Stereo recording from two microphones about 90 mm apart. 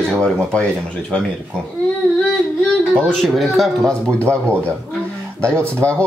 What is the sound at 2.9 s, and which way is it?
Speech, 5° left (ahead or behind).